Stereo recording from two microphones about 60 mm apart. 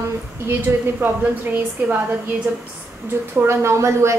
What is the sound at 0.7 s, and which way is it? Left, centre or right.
Speech, right.